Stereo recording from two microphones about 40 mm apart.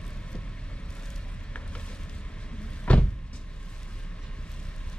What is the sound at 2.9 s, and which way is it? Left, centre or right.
Vehicle, left.